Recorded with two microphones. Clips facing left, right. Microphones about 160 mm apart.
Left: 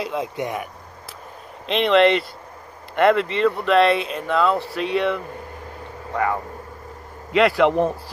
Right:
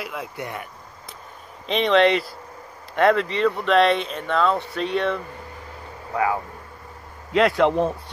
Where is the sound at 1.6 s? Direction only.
Centre (ahead or behind).